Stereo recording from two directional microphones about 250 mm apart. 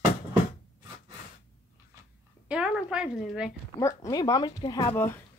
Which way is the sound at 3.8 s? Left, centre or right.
Centre.